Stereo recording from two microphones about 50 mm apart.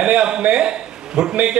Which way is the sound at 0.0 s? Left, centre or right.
Right.